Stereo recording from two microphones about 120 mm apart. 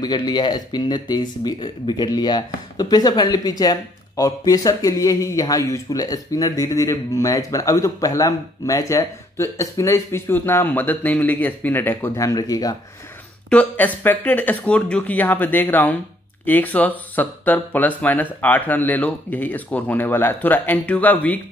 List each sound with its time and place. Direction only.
0.0 s a man's voice: 35° left (ahead or behind)
13.5 s speech: 10° left (ahead or behind)